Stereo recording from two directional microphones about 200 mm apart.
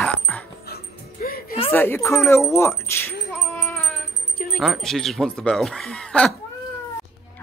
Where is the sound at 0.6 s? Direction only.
50° left (ahead or behind).